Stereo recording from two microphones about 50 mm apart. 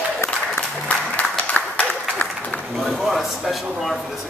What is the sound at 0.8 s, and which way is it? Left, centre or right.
Applause, left.